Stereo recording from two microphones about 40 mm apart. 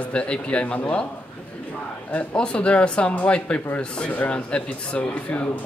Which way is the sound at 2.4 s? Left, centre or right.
Left.